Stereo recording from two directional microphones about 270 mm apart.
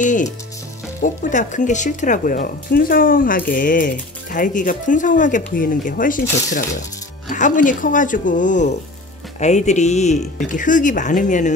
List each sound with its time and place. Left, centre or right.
0.0 s speech: left
7.2 s speech: left